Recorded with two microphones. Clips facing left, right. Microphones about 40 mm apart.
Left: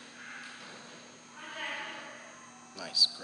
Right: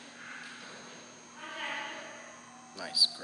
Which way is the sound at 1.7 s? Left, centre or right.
Centre.